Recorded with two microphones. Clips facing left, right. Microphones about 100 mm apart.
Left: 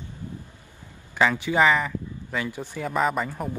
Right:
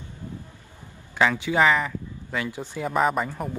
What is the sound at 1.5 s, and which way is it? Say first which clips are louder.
Speech: even; centre (ahead or behind).